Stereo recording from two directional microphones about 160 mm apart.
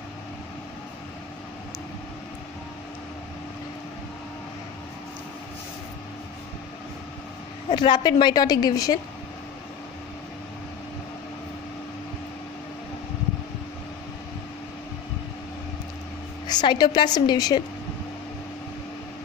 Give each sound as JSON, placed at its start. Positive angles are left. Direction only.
{"t": 7.7, "sound": "a woman's voice", "side_deg": 30}
{"t": 16.4, "sound": "a woman's voice", "side_deg": 25}